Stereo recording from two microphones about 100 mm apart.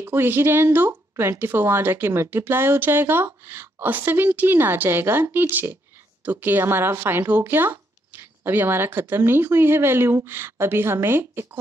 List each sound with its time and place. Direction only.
0.0 s speech: 20° right (ahead or behind)